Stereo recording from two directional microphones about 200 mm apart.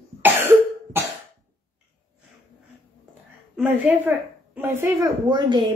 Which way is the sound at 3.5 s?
10° right (ahead or behind).